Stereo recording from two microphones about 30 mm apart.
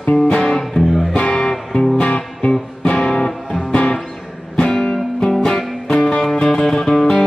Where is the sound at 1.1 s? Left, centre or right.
Left.